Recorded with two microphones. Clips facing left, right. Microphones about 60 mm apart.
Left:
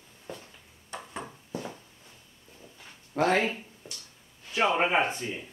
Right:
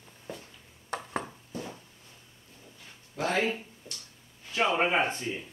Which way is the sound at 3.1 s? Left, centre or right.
Left.